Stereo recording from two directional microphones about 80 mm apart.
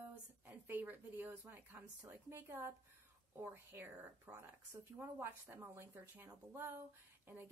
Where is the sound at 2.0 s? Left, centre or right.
Right.